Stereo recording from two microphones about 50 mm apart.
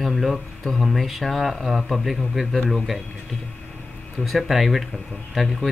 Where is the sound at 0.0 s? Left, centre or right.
Centre.